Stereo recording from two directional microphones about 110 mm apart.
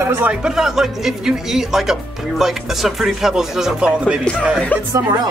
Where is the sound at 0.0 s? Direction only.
20° right (ahead or behind).